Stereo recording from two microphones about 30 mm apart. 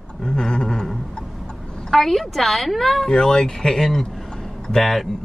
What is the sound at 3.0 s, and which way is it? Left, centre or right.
Speech, centre.